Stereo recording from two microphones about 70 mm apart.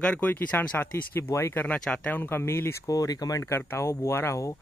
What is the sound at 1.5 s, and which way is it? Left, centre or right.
Speech, centre.